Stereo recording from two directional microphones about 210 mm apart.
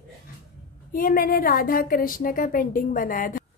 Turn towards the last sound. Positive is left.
turn(degrees=40)  # may be behind; listen again after turning